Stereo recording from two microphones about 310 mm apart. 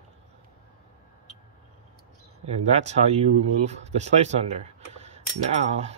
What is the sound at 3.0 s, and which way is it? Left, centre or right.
Speech, centre.